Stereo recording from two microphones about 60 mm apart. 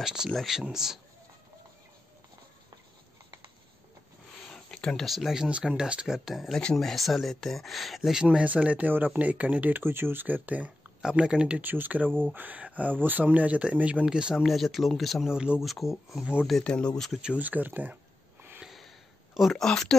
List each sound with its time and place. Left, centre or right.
0.0 s speech: centre
4.5 s a sound: centre
5.0 s speech: centre
6.5 s speech: centre; by 10.7 s right
11.0 s speech: centre
11.6 s speech: right; by 14.4 s centre
14.4 s speech: centre
15.3 s speech: centre
15.6 s speech: centre
16.6 s speech: centre
17.1 s speech: centre
17.4 s speech: right
18.6 s a sound: centre
19.4 s speech: centre